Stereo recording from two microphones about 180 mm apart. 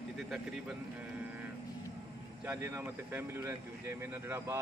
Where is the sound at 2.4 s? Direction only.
10° right (ahead or behind).